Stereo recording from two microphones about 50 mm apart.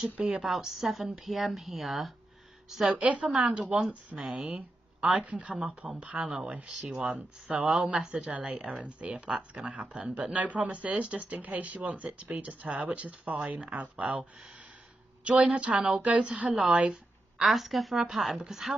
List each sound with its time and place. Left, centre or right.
0.0 s speech: centre
0.4 s speech: centre
3.0 s speech: right
4.2 s speech: centre
4.5 s speech: right
7.7 s speech: centre
8.1 s speech: right
15.2 s speech: right
17.4 s speech: centre